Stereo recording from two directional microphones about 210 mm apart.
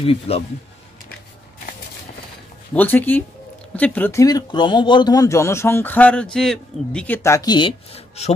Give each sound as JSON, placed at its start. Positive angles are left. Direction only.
{"t": 0.0, "sound": "speech", "side_deg": 25}
{"t": 2.7, "sound": "speech", "side_deg": 10}